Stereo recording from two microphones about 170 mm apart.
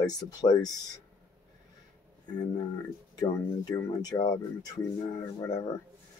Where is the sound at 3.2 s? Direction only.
20° left (ahead or behind).